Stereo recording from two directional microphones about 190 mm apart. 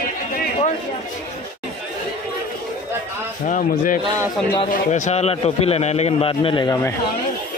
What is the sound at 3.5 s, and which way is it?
A man's voice, 45° left (ahead or behind).